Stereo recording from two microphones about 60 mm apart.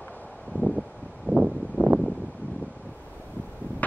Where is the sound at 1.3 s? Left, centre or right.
Right.